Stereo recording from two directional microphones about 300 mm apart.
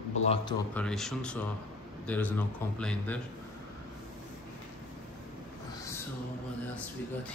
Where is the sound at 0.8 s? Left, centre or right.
Centre.